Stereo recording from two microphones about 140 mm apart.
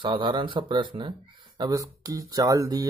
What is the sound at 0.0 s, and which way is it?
Speech, 35° right (ahead or behind).